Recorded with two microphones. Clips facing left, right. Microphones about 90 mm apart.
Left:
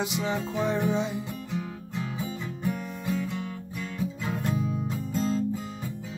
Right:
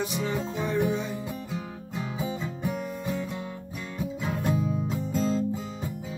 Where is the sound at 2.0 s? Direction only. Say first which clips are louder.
Right 2 dB; 15° right (ahead or behind).